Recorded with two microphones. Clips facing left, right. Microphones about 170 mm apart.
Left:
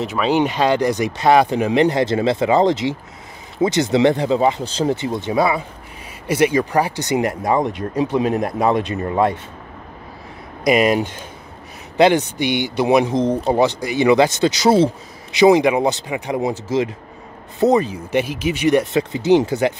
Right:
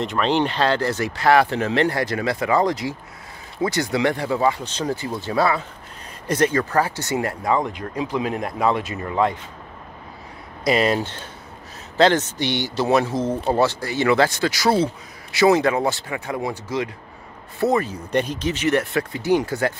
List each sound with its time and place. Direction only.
0.0 s speech: 5° left (ahead or behind); by 8.5 s 25° left (ahead or behind)
8.7 s speech: 40° left (ahead or behind)
10.6 s speech: 15° left (ahead or behind)
17.6 s speech: 20° left (ahead or behind)